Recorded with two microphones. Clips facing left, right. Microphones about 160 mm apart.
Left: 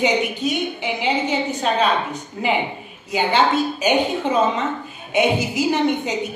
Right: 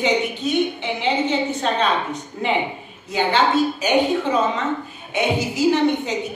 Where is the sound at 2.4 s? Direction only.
10° left (ahead or behind).